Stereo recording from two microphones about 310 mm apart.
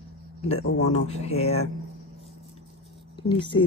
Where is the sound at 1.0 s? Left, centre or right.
Centre.